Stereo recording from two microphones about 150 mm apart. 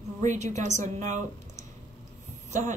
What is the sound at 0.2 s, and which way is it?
A woman's voice, 55° right (ahead or behind).